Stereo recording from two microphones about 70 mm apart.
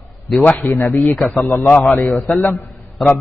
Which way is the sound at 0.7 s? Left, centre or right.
Left.